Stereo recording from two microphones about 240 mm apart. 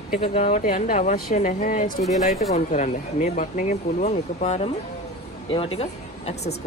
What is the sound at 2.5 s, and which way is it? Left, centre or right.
Speech, left.